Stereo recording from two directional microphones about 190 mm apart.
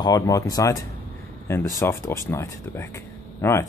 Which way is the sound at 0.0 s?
20° left (ahead or behind).